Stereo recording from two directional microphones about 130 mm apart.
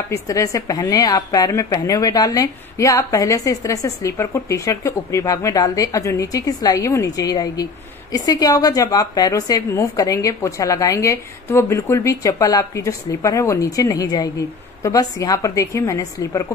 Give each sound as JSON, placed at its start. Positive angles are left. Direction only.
{"t": 0.1, "sound": "a woman's voice", "side_deg": 25}